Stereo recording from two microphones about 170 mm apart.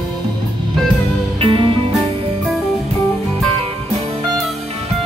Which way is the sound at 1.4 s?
30° right (ahead or behind).